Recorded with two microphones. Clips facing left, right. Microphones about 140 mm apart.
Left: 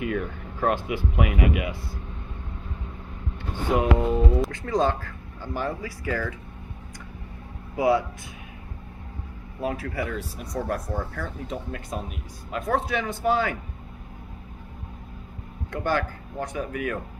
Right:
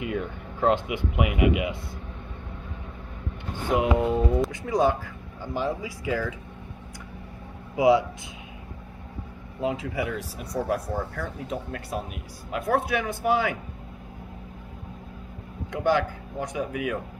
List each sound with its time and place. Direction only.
0.0 s speech: 20° right (ahead or behind)
3.7 s speech: 15° right (ahead or behind)
7.7 s speech: 15° right (ahead or behind)
9.6 s speech: 20° right (ahead or behind)
15.7 s speech: 15° right (ahead or behind)